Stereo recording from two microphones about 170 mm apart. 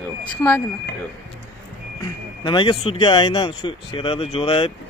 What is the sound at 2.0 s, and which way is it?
Speech, 30° left (ahead or behind).